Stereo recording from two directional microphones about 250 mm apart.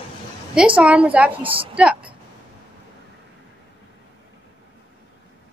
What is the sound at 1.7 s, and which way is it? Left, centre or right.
Speech, centre.